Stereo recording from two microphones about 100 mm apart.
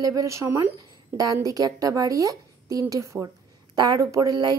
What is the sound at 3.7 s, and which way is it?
Speech, 45° right (ahead or behind).